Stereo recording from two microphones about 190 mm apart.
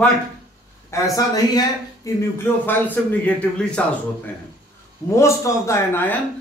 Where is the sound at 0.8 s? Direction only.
15° left (ahead or behind).